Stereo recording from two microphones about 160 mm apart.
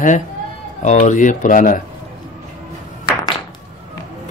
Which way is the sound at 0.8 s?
50° left (ahead or behind).